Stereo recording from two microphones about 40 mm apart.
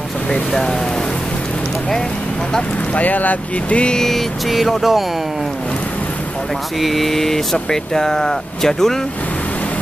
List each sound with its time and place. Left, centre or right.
2.9 s speech: left
3.8 s vehicle: centre
4.1 s speech: centre
6.8 s speech: centre